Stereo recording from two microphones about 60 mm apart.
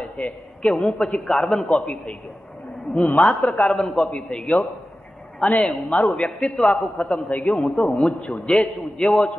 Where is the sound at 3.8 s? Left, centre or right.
Centre.